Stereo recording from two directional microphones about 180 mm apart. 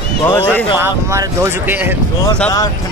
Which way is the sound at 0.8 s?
15° right (ahead or behind).